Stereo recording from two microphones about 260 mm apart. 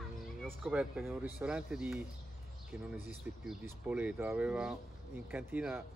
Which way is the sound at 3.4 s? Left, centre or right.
Centre.